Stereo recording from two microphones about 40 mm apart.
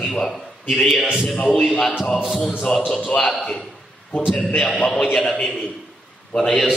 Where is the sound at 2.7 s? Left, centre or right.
Centre.